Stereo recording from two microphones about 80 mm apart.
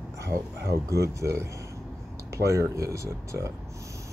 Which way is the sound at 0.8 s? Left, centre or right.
Right.